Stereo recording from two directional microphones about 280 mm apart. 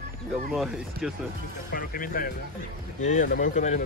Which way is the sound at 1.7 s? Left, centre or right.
Left.